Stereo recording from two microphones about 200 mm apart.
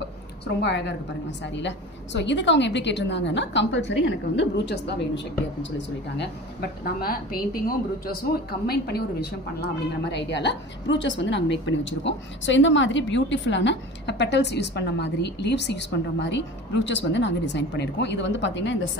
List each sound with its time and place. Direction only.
0.6 s a woman's voice: 60° left (ahead or behind)
6.8 s a woman's voice: 50° left (ahead or behind); by 18.8 s 65° left (ahead or behind)